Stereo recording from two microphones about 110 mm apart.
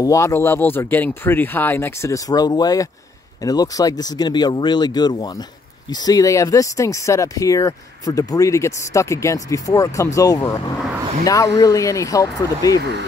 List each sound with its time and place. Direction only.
0.0 s speech: 30° left (ahead or behind)